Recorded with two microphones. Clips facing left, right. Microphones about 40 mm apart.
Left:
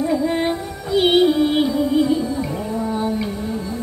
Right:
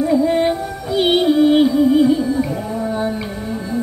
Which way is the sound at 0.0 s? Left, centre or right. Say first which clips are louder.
Right 4 dB; centre.